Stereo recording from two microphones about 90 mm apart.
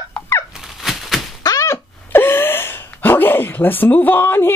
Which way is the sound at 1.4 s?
35° left (ahead or behind).